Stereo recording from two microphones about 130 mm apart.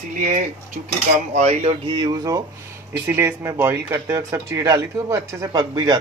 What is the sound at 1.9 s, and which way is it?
Speech, 35° right (ahead or behind).